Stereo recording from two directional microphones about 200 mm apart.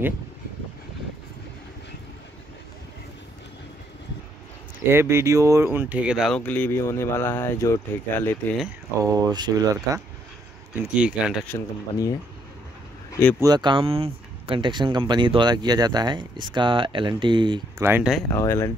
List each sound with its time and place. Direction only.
4.8 s speech: 10° right (ahead or behind); by 8.4 s 15° left (ahead or behind)
9.0 s speech: 20° right (ahead or behind)
10.8 s speech: 5° right (ahead or behind)
11.4 s speech: 15° left (ahead or behind)
13.4 s speech: 20° right (ahead or behind)
17.8 s speech: 5° right (ahead or behind)
18.3 s speech: 15° left (ahead or behind)